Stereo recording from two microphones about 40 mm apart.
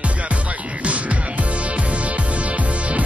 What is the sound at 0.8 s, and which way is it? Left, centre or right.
Music, right.